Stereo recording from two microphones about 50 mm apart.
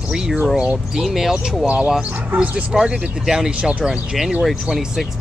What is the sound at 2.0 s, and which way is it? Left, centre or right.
Speech, right.